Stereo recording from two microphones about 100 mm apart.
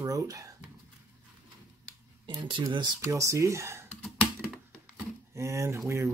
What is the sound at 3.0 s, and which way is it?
Speech, 30° right (ahead or behind).